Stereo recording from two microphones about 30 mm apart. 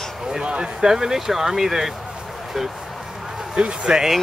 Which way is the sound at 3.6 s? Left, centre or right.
Right.